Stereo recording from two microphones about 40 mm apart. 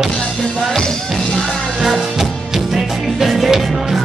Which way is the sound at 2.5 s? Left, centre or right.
Centre.